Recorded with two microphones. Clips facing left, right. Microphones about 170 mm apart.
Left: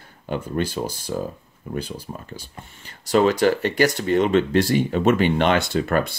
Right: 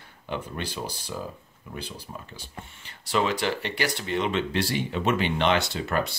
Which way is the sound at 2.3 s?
45° left (ahead or behind).